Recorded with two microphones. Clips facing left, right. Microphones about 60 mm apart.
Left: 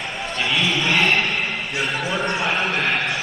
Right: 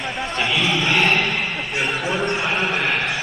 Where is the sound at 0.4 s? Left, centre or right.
Centre.